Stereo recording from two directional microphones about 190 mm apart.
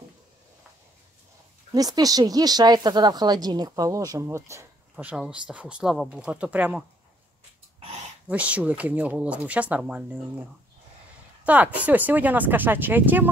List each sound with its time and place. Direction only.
1.7 s speech: 20° right (ahead or behind)
8.3 s speech: 5° right (ahead or behind)
11.4 s speech: 10° right (ahead or behind)